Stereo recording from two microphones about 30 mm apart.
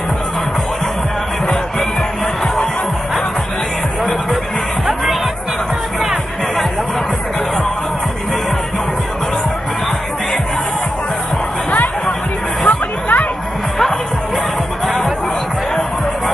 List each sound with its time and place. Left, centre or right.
2.4 s music: centre
12.6 s music: left